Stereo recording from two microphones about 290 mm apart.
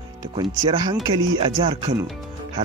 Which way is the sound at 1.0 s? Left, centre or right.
Centre.